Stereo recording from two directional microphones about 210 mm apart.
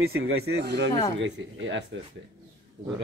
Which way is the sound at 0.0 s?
80° right.